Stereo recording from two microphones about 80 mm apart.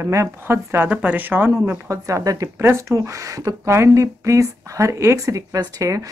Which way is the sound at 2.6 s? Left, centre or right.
Right.